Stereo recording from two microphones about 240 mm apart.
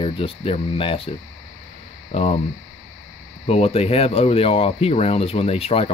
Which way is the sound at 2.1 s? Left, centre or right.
Left.